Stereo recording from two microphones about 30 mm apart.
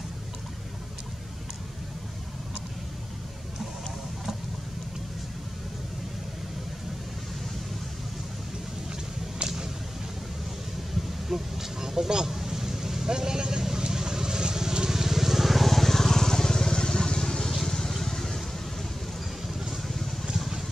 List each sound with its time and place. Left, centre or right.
11.2 s a sound: centre
12.4 s vehicle: centre
20.3 s vehicle: centre